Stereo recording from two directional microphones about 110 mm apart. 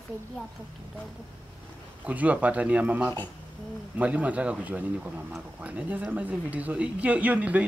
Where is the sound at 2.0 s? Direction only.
15° right (ahead or behind).